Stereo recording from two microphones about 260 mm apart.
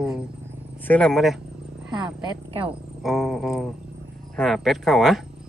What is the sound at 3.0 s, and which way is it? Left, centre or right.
Speech, centre.